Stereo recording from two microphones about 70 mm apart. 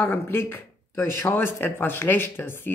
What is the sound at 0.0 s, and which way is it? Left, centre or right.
Speech, left.